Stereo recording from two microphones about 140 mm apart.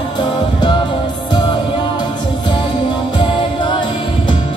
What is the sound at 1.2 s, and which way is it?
Music, 30° left (ahead or behind).